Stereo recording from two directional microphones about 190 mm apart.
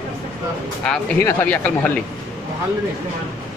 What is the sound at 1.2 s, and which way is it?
Speech, 10° left (ahead or behind).